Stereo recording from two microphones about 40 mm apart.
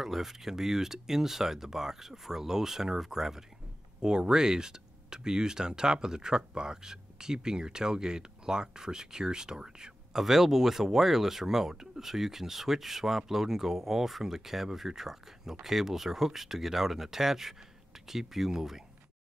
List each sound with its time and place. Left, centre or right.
0.0 s speech: centre